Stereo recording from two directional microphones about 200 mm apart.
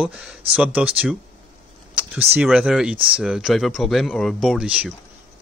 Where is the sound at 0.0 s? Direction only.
5° right (ahead or behind).